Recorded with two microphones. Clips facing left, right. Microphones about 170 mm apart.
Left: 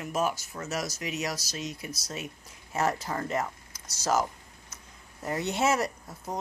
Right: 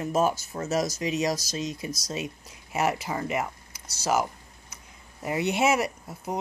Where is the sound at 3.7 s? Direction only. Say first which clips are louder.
Right 1 dB; 65° right (ahead or behind).